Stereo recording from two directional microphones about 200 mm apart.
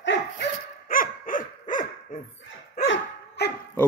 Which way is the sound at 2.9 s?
55° left (ahead or behind).